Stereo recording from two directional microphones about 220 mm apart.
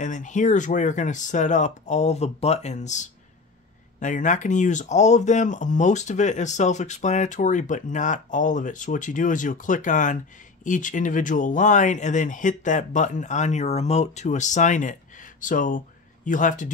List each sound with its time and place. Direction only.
0.0 s speech: 35° left (ahead or behind)
4.0 s speech: 35° left (ahead or behind)